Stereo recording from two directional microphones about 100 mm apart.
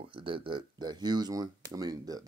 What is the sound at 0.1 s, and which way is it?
Speech, 65° right (ahead or behind).